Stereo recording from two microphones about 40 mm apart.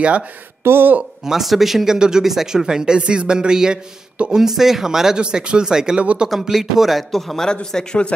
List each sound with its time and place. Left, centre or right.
0.7 s a woman's voice: right
1.2 s speech: centre
2.0 s speech: centre
5.2 s speech: right
5.9 s speech: right
6.2 s speech: centre
7.7 s speech: left